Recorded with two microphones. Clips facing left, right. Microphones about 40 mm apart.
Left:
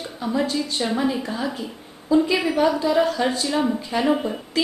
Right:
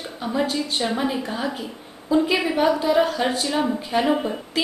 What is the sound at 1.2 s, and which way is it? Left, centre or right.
Speech, centre.